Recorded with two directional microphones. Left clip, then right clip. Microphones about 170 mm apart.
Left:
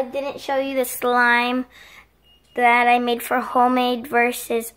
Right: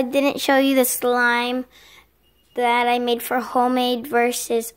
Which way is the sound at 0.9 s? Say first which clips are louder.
Left 1 dB; 35° right (ahead or behind).